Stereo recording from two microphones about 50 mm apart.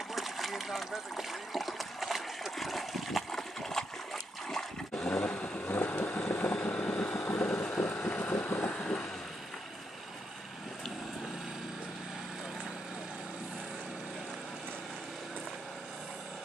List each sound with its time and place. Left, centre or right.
0.1 s splash: centre
3.3 s splash: centre
4.9 s vehicle: left